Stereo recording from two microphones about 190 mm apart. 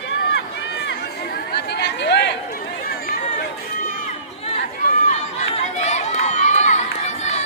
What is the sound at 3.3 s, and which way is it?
Run, 40° left (ahead or behind).